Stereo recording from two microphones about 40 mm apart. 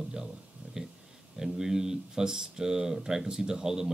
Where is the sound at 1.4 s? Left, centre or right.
Centre.